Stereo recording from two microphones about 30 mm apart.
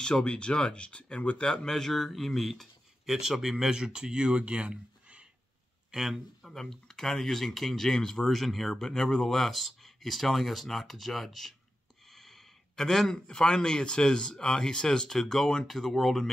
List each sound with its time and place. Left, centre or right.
0.0 s speech: left
1.7 s speech: centre
2.1 s speech: centre
3.3 s speech: centre; by 4.6 s right
6.1 s speech: centre
8.2 s speech: centre
8.7 s speech: centre
9.3 s a man's voice: centre